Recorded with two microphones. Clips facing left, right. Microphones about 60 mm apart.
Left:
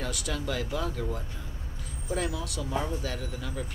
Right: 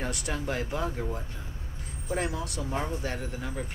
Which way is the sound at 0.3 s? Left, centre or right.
Right.